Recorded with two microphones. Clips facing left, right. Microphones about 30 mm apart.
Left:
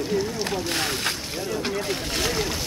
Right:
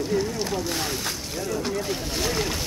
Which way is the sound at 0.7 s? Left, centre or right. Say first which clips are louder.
Left 3 dB; left.